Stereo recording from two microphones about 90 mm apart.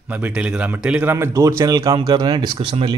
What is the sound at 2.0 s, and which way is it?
Speech, 55° right (ahead or behind).